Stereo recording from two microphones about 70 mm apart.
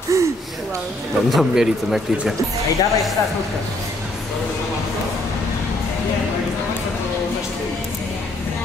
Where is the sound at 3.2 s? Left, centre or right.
Left.